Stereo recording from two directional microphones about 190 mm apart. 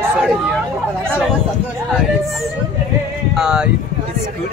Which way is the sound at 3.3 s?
5° right (ahead or behind).